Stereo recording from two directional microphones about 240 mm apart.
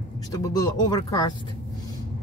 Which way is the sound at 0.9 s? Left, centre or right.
Centre.